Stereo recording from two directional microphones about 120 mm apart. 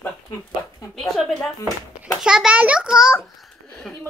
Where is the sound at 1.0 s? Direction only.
Centre (ahead or behind).